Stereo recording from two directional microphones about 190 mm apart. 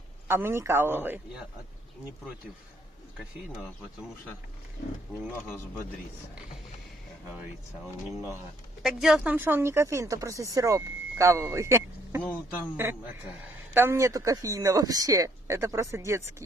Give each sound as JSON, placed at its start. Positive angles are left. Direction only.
{"t": 0.3, "sound": "speech", "side_deg": -10}
{"t": 8.8, "sound": "speech", "side_deg": -5}